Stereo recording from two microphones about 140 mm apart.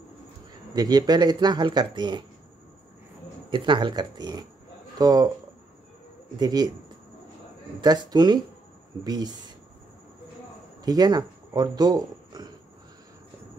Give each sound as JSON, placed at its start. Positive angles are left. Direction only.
{"t": 0.7, "sound": "speech", "side_deg": -30}
{"t": 3.4, "sound": "speech", "side_deg": -35}
{"t": 6.4, "sound": "speech", "side_deg": -30}
{"t": 7.8, "sound": "speech", "side_deg": -30}
{"t": 10.8, "sound": "speech", "side_deg": -30}